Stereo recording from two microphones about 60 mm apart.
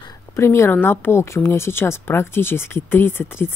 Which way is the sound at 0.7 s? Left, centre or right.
Left.